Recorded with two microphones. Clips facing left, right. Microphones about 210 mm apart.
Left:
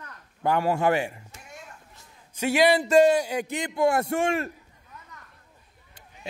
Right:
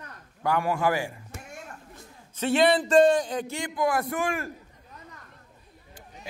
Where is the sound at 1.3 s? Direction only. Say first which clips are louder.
Right 4 dB; 50° right (ahead or behind).